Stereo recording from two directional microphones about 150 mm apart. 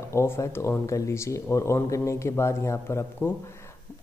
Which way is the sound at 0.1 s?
20° left (ahead or behind).